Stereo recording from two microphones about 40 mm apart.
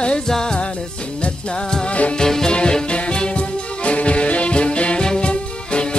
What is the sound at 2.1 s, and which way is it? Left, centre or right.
Music, centre.